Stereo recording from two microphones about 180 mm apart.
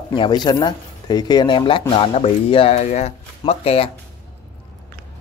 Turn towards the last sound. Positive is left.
turn(degrees=35)  # may be behind; listen again after turning